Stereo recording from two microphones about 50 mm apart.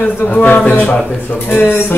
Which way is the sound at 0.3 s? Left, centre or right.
Left.